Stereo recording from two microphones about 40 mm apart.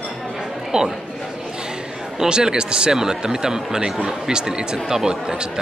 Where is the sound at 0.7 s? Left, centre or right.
Centre.